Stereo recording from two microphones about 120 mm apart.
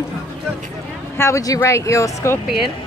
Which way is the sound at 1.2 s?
25° left (ahead or behind).